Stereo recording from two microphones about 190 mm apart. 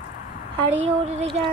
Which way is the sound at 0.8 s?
35° right (ahead or behind).